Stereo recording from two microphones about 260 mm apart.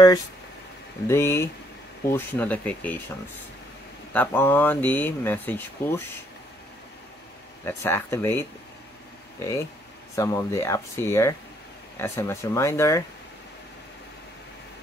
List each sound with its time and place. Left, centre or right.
1.0 s speech: centre
4.1 s speech: centre
7.6 s speech: centre
10.1 s speech: centre